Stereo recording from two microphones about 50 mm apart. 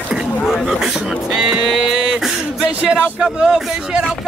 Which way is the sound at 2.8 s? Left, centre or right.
Centre.